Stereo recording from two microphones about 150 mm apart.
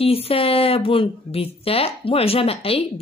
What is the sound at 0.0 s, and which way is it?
Speech, 40° left (ahead or behind).